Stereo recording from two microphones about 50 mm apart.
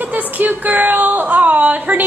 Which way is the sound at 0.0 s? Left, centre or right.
Right.